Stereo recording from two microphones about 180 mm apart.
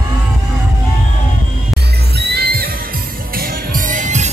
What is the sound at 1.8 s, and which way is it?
Music, 65° right (ahead or behind).